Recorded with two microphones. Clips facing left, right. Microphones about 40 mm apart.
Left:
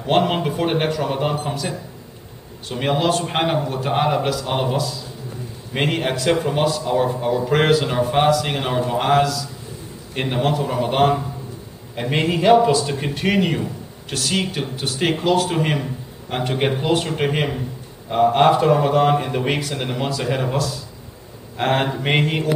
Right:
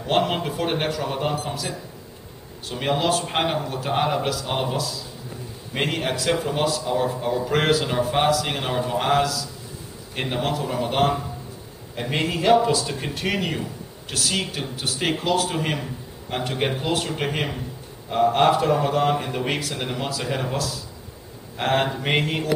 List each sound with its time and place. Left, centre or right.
0.0 s a man's voice: centre